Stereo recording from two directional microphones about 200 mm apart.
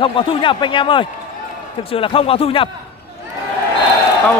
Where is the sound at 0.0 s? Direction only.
25° left (ahead or behind).